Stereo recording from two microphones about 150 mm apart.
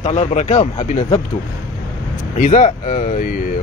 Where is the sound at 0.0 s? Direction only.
50° left (ahead or behind).